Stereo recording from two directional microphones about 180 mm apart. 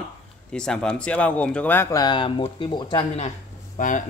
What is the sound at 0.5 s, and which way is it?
Speech, 5° left (ahead or behind).